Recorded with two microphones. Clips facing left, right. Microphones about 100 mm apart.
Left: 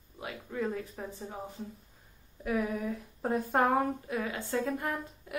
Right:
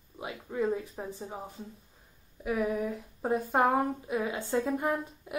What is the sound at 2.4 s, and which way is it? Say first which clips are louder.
Speech: right 2 dB; 5° right (ahead or behind).